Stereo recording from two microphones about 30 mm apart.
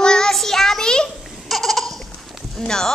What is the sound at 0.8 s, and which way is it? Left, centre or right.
Child singing, left.